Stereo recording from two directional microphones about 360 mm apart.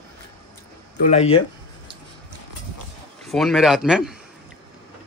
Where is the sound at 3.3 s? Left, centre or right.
Centre.